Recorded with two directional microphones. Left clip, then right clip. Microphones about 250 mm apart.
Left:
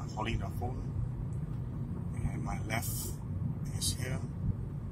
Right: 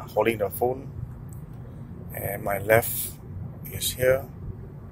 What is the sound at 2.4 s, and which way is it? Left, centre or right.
Speech, right.